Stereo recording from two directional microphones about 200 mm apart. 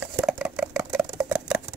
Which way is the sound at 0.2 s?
5° right (ahead or behind).